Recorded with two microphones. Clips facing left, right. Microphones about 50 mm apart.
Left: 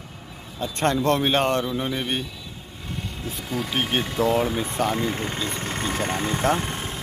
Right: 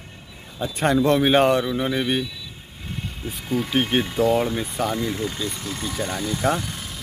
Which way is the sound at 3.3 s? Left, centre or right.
Centre.